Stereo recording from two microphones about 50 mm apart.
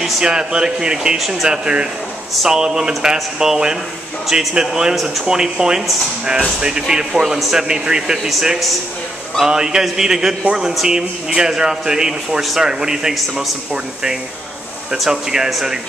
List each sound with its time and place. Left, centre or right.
0.2 s a man's voice: centre
1.5 s a man's voice: centre
8.3 s a man's voice: centre
9.4 s a man's voice: centre
15.0 s a man's voice: centre